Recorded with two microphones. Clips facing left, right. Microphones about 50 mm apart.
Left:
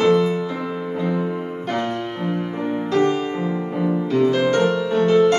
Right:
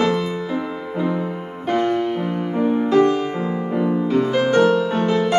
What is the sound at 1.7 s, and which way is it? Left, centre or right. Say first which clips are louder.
Music: right 7 dB; centre.